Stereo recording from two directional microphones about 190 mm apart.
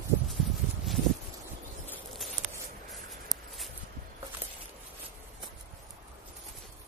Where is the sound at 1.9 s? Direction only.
Centre (ahead or behind).